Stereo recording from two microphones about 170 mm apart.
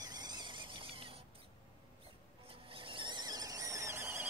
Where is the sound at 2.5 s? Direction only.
30° right (ahead or behind); by 4.3 s 15° right (ahead or behind).